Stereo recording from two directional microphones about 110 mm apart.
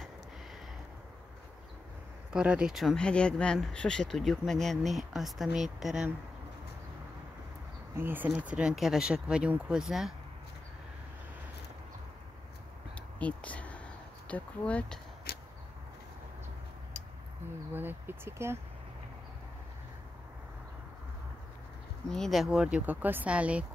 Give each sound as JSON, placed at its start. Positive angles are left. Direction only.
{"t": 2.3, "sound": "speech", "side_deg": -10}
{"t": 7.9, "sound": "speech", "side_deg": -20}
{"t": 13.2, "sound": "speech", "side_deg": 10}
{"t": 17.7, "sound": "speech", "side_deg": -20}
{"t": 22.1, "sound": "speech", "side_deg": 0}